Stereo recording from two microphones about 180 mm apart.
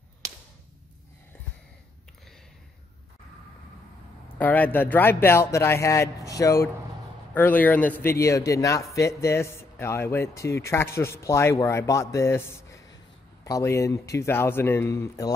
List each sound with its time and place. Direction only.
4.4 s speech: 10° left (ahead or behind)